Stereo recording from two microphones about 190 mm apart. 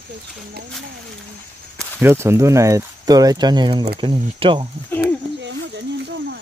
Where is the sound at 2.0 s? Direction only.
10° right (ahead or behind).